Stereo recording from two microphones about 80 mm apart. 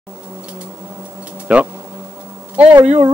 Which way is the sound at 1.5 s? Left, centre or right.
Centre.